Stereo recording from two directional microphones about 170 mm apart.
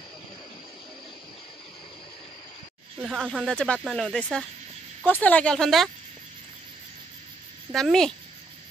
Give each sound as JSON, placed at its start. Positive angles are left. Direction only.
{"t": 3.1, "sound": "a woman's voice", "side_deg": 5}
{"t": 7.7, "sound": "speech", "side_deg": 5}